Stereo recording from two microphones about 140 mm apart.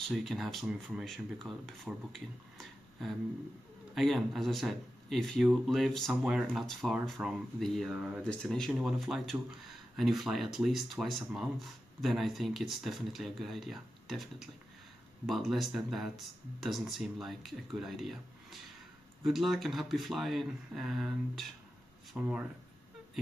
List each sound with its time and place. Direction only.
0.1 s speech: centre (ahead or behind)